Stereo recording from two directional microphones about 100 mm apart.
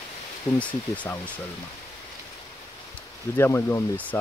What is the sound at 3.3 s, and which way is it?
Speech, 25° left (ahead or behind).